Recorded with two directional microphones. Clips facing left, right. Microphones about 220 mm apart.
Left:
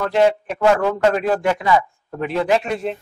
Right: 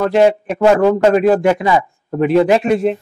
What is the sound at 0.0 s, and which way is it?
A man's voice, 10° right (ahead or behind).